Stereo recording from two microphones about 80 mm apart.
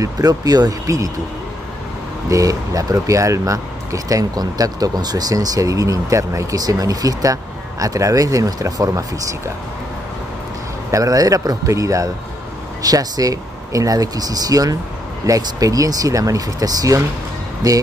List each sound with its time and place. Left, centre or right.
0.0 s speech: right
2.2 s speech: right
10.9 s speech: right